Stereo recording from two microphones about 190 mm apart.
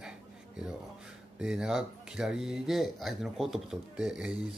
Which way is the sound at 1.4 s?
5° right (ahead or behind).